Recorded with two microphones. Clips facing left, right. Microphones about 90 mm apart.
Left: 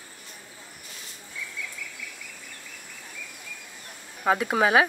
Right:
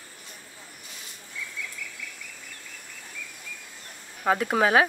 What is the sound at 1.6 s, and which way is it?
Cricket, 5° left (ahead or behind).